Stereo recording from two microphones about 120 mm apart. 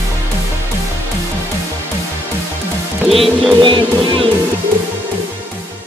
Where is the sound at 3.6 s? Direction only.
45° right (ahead or behind).